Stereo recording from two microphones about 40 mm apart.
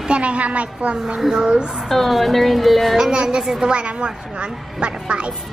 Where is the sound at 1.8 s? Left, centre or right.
Centre.